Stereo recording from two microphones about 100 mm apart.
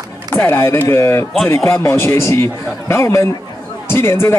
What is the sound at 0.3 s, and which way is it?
Speech, 20° left (ahead or behind).